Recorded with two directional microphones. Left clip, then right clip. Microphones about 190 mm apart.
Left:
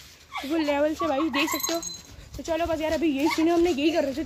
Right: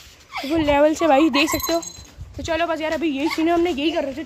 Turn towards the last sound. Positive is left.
turn(degrees=-5)  # may be behind; listen again after turning